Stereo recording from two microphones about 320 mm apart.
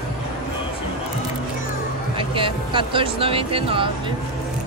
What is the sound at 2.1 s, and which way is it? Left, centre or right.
Speech, centre.